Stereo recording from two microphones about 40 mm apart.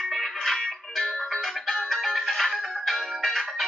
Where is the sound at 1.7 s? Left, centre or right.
Centre.